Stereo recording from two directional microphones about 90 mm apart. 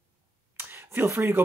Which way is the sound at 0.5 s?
25° right (ahead or behind).